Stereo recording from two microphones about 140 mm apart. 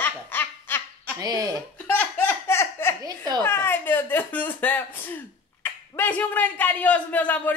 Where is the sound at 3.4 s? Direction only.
15° left (ahead or behind).